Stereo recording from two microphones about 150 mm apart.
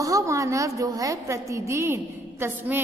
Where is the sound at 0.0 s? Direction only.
20° right (ahead or behind).